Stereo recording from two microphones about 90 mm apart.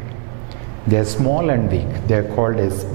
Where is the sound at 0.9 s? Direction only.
15° right (ahead or behind).